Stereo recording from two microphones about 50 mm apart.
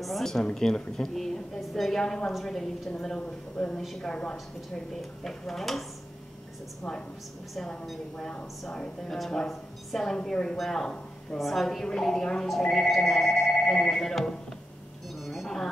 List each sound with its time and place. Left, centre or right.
0.0 s speech: centre
2.3 s telephone bell ringing: centre
3.0 s speech: centre
3.7 s telephone bell ringing: centre
4.0 s speech: centre
8.2 s speech: centre
12.6 s telephone bell ringing: centre
13.6 s speech: centre
15.1 s a sound: centre